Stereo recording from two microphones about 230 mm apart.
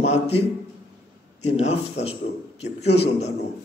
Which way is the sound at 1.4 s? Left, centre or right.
Left.